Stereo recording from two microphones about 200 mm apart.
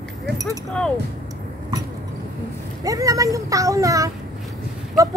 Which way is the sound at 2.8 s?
15° right (ahead or behind).